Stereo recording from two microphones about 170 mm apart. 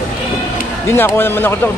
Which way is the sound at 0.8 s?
15° left (ahead or behind).